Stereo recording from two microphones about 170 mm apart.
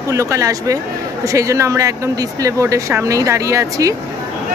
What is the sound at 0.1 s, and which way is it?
Speech, 15° right (ahead or behind).